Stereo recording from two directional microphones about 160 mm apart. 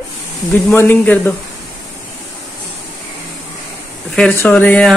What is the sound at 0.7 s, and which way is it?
Speech, 10° left (ahead or behind).